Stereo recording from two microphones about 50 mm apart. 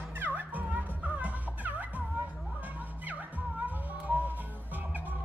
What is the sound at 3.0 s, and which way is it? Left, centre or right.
Music, right.